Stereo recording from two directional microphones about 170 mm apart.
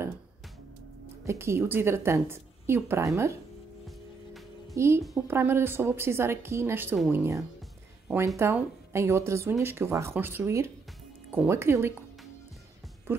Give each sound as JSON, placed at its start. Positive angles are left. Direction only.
{"t": 1.2, "sound": "speech", "side_deg": -15}
{"t": 4.7, "sound": "speech", "side_deg": -15}
{"t": 13.1, "sound": "speech", "side_deg": -10}